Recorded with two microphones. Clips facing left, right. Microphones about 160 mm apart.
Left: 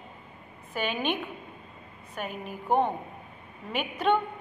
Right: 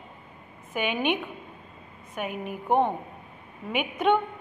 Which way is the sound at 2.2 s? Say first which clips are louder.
Right 3 dB; 15° right (ahead or behind).